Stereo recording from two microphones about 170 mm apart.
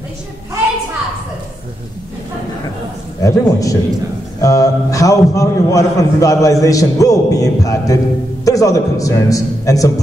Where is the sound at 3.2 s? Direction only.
20° left (ahead or behind).